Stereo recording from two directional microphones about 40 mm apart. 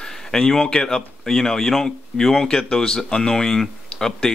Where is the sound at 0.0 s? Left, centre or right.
Centre.